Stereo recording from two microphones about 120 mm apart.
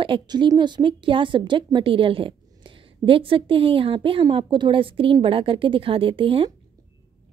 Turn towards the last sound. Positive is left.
turn(degrees=-45)  # may be behind; listen again after turning